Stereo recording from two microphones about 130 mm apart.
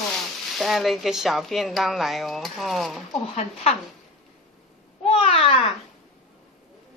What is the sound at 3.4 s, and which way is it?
Speech, 55° left (ahead or behind).